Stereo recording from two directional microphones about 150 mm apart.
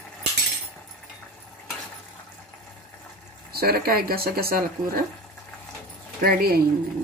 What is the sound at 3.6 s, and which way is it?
Speech, 90° right.